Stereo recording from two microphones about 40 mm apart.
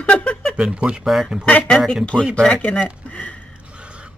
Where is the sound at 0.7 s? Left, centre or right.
Right.